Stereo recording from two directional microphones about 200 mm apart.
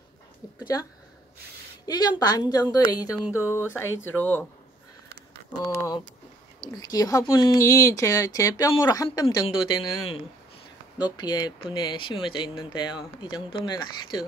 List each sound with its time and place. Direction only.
1.9 s speech: 20° left (ahead or behind)
3.3 s speech: 10° right (ahead or behind)
3.5 s speech: 10° left (ahead or behind)
5.8 s speech: 20° left (ahead or behind)
11.0 s speech: 20° left (ahead or behind)